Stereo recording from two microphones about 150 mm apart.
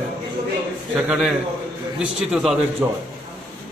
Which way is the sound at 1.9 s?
5° right (ahead or behind).